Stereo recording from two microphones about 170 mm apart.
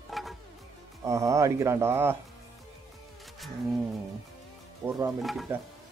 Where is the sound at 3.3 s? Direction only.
Centre (ahead or behind).